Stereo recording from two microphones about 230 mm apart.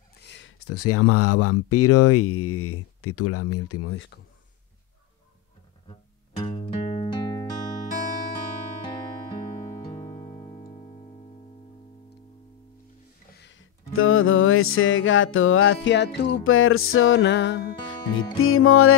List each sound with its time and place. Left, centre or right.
0.1 s speech: left
6.4 s music: left
9.9 s music: left
13.3 s music: left
18.4 s music: left